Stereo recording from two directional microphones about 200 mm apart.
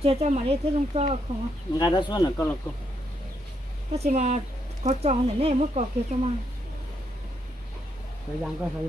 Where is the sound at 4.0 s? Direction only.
35° right (ahead or behind).